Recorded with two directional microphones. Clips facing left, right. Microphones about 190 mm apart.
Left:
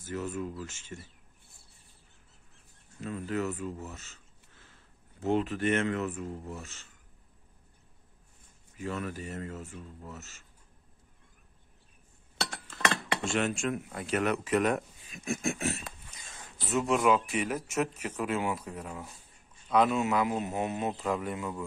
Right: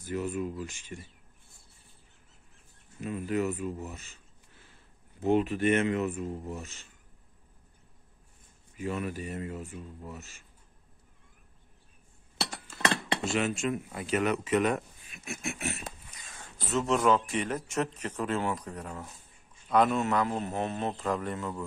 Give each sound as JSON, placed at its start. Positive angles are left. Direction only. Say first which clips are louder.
{"t": 0.0, "sound": "speech", "louder": "right 3 dB", "side_deg": -15}
{"t": 3.0, "sound": "speech", "louder": "right 3 dB", "side_deg": -15}
{"t": 8.7, "sound": "speech", "louder": "right 2 dB", "side_deg": -15}
{"t": 12.4, "sound": "speech", "louder": "right 1 dB", "side_deg": -10}
{"t": 15.3, "sound": "a sound", "louder": "left 4 dB", "side_deg": 35}
{"t": 16.3, "sound": "speech", "louder": "even", "side_deg": 15}